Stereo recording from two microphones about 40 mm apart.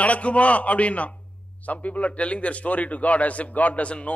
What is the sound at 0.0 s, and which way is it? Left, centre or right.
A man's voice, left.